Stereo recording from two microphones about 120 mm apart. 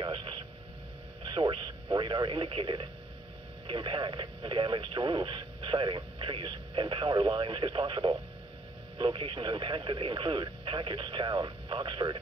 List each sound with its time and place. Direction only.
0.0 s a sound: 45° right (ahead or behind)
1.2 s radio: 40° right (ahead or behind)
3.6 s speech: 40° right (ahead or behind)